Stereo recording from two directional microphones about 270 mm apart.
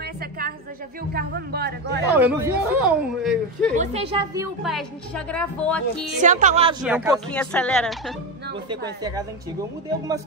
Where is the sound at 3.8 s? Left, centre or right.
Right.